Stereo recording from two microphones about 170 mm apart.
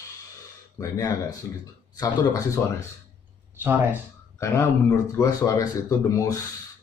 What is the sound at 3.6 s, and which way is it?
Speech, 10° right (ahead or behind).